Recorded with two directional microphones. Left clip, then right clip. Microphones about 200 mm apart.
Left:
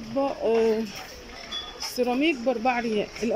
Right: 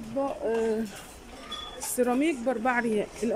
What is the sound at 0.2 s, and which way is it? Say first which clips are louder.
Speech: left 5 dB; 10° left (ahead or behind).